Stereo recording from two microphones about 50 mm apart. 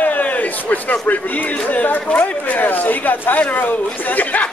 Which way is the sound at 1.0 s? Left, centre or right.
Left.